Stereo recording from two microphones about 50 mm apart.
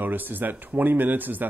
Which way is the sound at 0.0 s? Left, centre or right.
Right.